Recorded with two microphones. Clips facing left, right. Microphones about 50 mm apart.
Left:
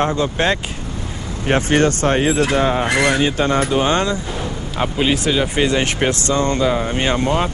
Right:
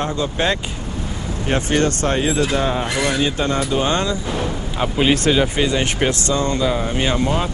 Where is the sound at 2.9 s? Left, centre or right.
Left.